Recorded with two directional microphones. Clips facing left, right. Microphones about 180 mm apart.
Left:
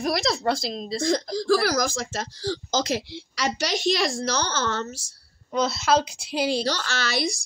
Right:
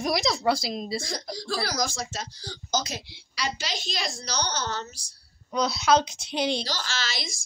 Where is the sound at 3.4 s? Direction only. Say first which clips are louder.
Left 7 dB; 75° left (ahead or behind).